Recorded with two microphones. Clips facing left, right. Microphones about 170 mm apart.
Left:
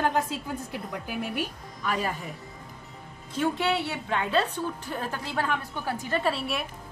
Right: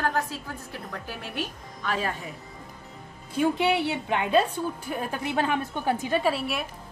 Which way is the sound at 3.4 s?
15° right (ahead or behind).